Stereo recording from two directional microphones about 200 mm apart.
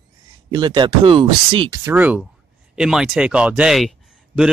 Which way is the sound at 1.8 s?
10° right (ahead or behind).